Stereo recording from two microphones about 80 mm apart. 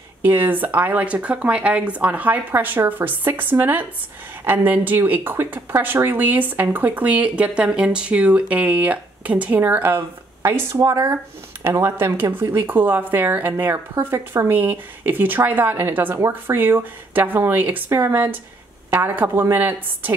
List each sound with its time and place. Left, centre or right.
0.2 s a woman's voice: right